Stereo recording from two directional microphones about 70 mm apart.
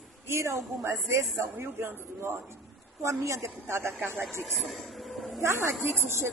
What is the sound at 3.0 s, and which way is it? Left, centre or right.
A woman's voice, right.